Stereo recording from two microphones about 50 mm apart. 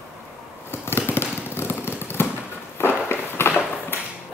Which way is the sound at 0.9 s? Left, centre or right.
Left.